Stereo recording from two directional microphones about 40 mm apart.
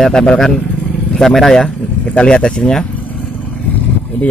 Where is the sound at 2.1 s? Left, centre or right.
Left.